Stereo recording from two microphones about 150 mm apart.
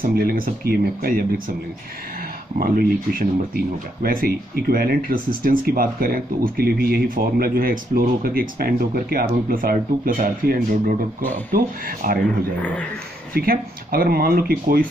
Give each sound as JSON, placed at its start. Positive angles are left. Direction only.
{"t": 0.0, "sound": "speech", "side_deg": -80}
{"t": 2.6, "sound": "speech", "side_deg": -70}
{"t": 12.5, "sound": "speech", "side_deg": 10}
{"t": 13.3, "sound": "speech", "side_deg": -80}